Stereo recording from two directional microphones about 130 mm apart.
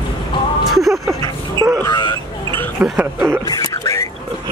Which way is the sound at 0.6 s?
Centre (ahead or behind).